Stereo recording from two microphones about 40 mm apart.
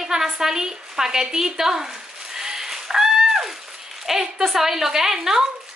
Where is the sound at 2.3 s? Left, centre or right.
Centre.